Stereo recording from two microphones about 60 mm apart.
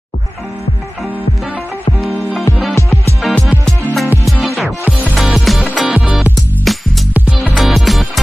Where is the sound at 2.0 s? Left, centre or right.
Centre.